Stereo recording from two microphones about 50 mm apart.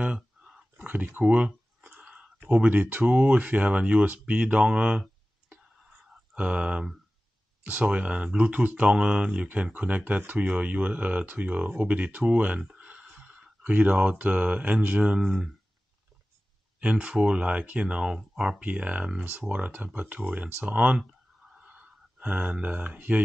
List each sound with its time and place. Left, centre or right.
0.7 s a sound: right
1.2 s a sound: right
2.5 s speech: right
5.5 s whispering: right
6.3 s speech: right
15.1 s speech: centre
16.8 s speech: right
18.6 s speech: right
21.5 s a sound: right